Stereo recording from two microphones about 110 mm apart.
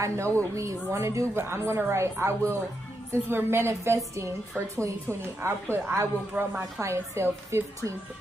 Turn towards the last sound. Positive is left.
turn(degrees=-25)  # may be behind; listen again after turning